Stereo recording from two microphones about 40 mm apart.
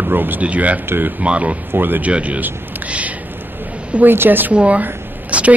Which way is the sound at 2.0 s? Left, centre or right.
Right.